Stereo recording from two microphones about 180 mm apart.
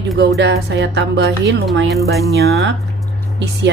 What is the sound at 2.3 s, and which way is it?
Music, 65° right (ahead or behind).